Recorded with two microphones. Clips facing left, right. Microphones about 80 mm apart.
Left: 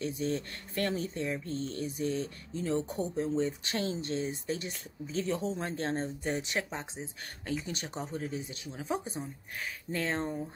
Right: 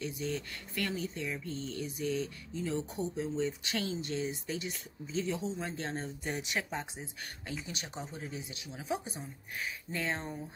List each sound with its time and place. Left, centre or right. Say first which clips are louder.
0.0 s speech: left 4 dB; left
5.9 s speech: left 4 dB; left
9.9 s speech: left 5 dB; centre